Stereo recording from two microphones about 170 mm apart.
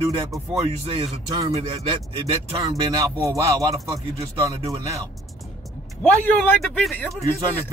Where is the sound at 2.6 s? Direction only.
20° right (ahead or behind).